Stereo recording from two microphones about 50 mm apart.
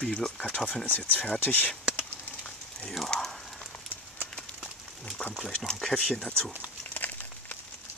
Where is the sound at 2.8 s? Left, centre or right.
Centre.